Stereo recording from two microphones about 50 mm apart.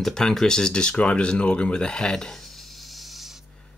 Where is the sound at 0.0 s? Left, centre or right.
Centre.